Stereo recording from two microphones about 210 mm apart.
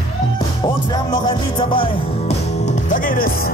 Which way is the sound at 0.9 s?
20° left (ahead or behind).